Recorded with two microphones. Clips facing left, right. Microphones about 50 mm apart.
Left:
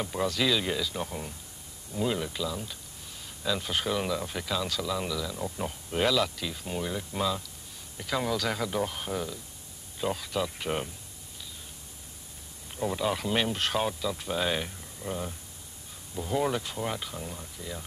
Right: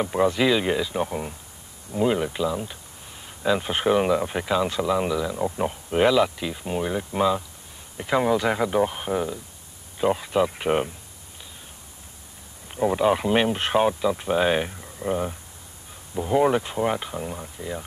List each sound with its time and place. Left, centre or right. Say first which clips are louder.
0.0 s speech: right 8 dB; right
12.7 s speech: right 9 dB; right